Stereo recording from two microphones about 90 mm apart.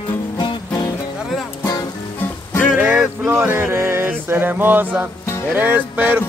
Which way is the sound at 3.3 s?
25° right (ahead or behind).